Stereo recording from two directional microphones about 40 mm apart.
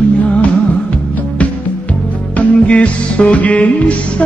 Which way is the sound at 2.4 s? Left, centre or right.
Left.